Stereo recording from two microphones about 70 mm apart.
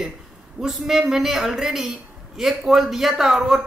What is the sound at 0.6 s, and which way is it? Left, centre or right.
Speech, centre.